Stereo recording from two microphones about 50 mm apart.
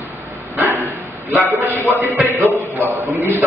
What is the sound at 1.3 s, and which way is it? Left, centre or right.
Speech, right.